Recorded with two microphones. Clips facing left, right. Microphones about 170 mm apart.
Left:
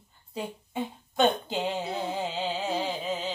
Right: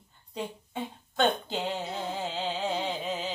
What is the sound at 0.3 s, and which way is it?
Speech, 5° left (ahead or behind).